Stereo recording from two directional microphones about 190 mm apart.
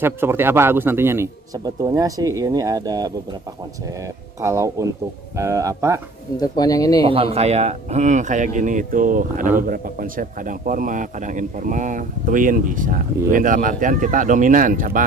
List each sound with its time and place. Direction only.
0.0 s a man's voice: 10° right (ahead or behind)
4.4 s a man's voice: 15° right (ahead or behind)
6.3 s speech: 20° left (ahead or behind)
7.1 s speech: 30° right (ahead or behind); by 15.0 s 45° right (ahead or behind)